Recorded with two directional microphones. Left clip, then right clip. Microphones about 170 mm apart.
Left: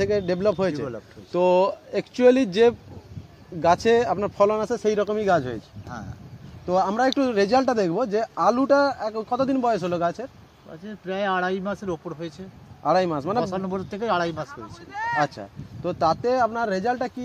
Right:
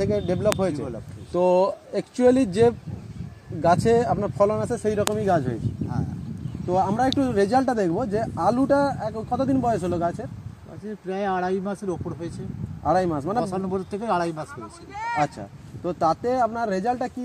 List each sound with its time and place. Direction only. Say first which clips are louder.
0.0 s a man's voice: left 1 dB; 10° right (ahead or behind)
1.3 s speech: even; 15° right (ahead or behind)
7.0 s a man's voice: left 1 dB; 10° right (ahead or behind)
12.8 s speech: left 1 dB; 10° right (ahead or behind)
13.4 s a man's voice: even; 5° left (ahead or behind)
15.1 s speech: right 1 dB; 10° right (ahead or behind)